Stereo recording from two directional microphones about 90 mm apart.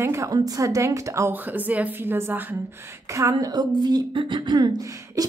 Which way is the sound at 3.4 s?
50° right (ahead or behind).